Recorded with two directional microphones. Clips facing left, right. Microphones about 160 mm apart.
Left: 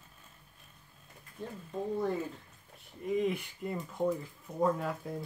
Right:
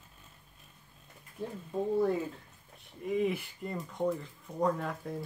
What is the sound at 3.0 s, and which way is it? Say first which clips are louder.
Speech: even; centre (ahead or behind).